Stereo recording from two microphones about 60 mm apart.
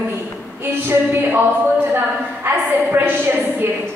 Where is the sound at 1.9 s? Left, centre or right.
Right.